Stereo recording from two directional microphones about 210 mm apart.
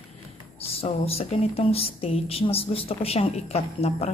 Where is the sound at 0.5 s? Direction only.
30° left (ahead or behind).